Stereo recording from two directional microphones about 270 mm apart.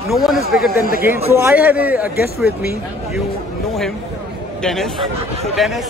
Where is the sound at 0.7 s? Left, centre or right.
Left.